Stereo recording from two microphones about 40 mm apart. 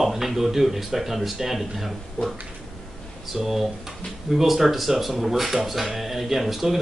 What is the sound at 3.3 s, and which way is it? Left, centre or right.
Speech, centre.